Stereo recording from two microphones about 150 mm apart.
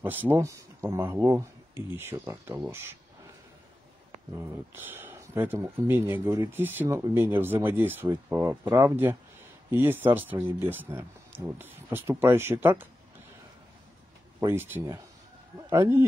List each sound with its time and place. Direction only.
0.3 s speech: 20° right (ahead or behind)
4.3 s speech: 15° right (ahead or behind)
14.4 s speech: 15° right (ahead or behind)